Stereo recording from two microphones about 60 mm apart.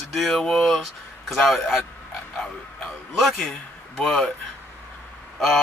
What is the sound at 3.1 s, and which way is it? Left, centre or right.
Speech, centre.